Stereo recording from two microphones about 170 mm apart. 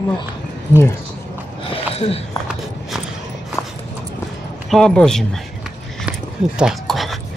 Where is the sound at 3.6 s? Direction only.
20° left (ahead or behind).